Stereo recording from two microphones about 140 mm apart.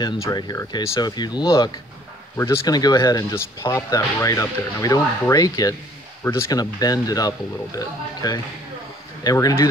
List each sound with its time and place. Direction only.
0.0 s speech: 30° left (ahead or behind)